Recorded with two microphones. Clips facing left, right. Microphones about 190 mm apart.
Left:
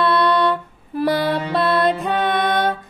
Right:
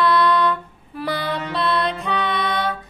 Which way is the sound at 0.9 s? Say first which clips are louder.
Left 6 dB; 45° left (ahead or behind).